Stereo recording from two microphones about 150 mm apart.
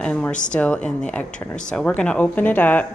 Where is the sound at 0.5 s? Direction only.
10° left (ahead or behind).